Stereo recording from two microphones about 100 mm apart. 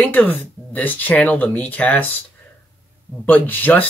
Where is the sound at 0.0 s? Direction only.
15° left (ahead or behind).